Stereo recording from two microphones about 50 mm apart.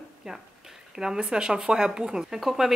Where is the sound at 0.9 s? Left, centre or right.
Centre.